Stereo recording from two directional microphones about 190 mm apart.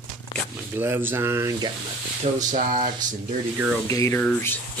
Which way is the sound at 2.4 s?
45° right (ahead or behind).